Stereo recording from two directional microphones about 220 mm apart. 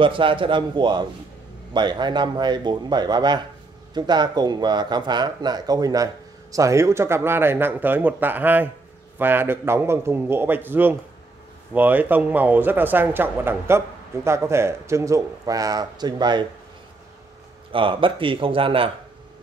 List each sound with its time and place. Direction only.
0.0 s speech: 25° right (ahead or behind)
17.6 s speech: 25° right (ahead or behind)